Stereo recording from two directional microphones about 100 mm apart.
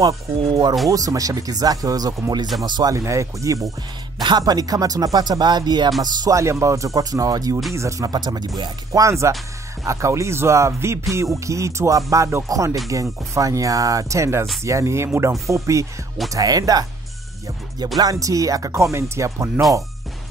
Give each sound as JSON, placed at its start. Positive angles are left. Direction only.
{"t": 0.0, "sound": "speech", "side_deg": -40}
{"t": 4.2, "sound": "speech", "side_deg": -45}
{"t": 6.2, "sound": "speech", "side_deg": -30}
{"t": 8.1, "sound": "speech", "side_deg": -45}
{"t": 9.0, "sound": "speech", "side_deg": -30}
{"t": 18.2, "sound": "speech", "side_deg": -35}